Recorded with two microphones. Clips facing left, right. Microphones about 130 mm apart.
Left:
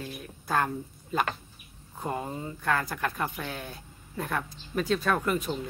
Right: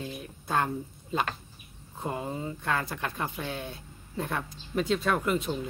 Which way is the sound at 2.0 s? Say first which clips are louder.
Even; 20° right (ahead or behind).